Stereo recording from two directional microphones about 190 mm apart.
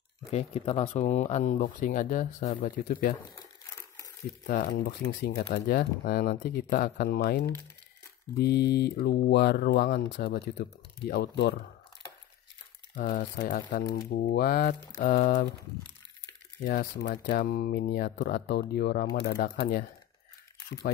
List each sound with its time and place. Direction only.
0.3 s speech: 35° left (ahead or behind)
4.5 s speech: 45° left (ahead or behind)
13.0 s speech: 50° left (ahead or behind)
17.1 s speech: 55° left (ahead or behind)